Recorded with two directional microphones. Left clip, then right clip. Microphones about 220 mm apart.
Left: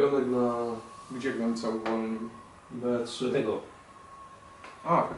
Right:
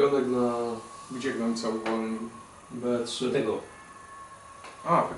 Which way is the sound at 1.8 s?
10° left (ahead or behind).